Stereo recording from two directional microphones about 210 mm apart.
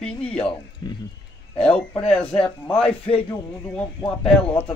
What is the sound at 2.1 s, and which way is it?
Speech, 5° left (ahead or behind).